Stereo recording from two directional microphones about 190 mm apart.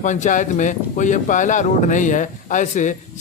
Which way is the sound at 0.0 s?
40° left (ahead or behind).